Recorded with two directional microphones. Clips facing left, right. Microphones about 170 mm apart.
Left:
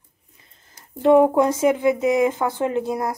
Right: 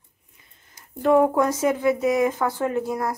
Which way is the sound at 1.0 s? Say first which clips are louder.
Left 3 dB; 20° left (ahead or behind).